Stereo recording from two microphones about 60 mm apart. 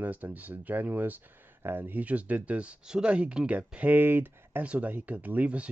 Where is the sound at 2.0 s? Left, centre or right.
Right.